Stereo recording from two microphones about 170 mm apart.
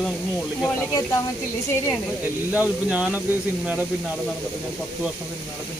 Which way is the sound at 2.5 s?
10° right (ahead or behind).